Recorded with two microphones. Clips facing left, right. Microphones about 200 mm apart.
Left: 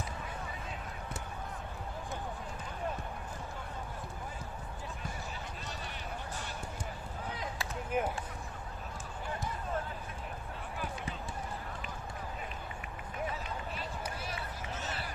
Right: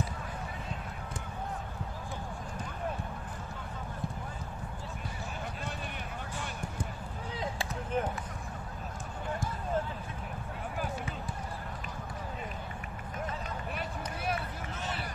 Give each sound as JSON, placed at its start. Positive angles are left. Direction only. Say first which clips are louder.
{"t": 7.9, "sound": "basketball bounce", "louder": "right 1 dB", "side_deg": 10}
{"t": 13.7, "sound": "run", "louder": "right 2 dB", "side_deg": -60}